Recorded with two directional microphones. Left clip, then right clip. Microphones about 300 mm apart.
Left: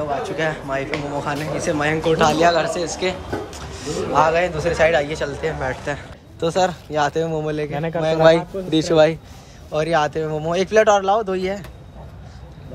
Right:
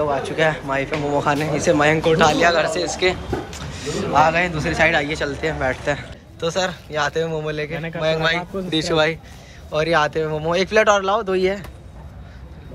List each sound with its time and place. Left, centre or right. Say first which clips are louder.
0.0 s speech: right 3 dB; centre
7.7 s a man's voice: left 4 dB; left
8.2 s speech: left 7 dB; centre